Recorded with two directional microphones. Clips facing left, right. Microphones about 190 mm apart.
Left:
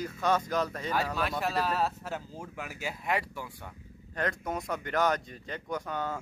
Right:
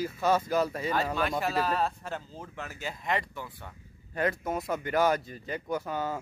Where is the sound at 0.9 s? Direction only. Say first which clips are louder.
Even; 5° left (ahead or behind).